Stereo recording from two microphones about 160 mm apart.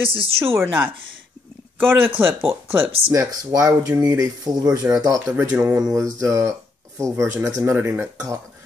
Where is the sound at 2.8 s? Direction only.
35° right (ahead or behind).